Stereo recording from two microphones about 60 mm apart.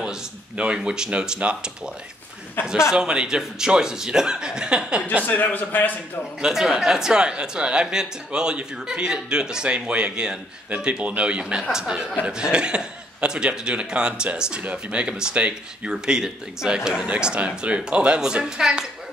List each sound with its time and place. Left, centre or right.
0.0 s speech: centre
5.2 s a man's voice: left
6.4 s speech: centre